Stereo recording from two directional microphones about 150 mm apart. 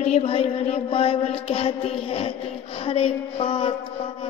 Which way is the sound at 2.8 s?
40° left (ahead or behind).